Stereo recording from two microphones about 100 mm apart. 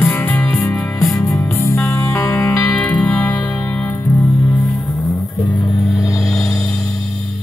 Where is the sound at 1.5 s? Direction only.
30° left (ahead or behind).